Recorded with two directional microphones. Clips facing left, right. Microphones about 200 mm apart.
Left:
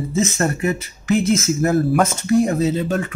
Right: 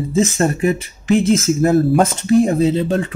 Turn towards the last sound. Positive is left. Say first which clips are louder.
# right 4 dB
turn(degrees=-30)  # may be behind; listen again after turning